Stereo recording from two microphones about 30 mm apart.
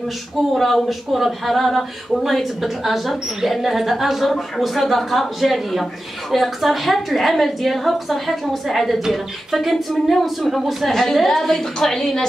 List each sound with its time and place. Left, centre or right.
0.6 s a woman's voice: centre
10.9 s a woman's voice: centre
12.0 s a woman's voice: centre